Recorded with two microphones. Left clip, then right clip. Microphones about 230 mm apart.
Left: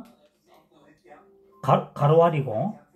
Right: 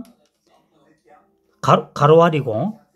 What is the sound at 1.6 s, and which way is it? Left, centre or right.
Speech, right.